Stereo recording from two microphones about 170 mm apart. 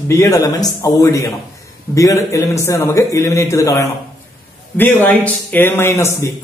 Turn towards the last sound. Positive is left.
turn(degrees=15)  # may be behind; listen again after turning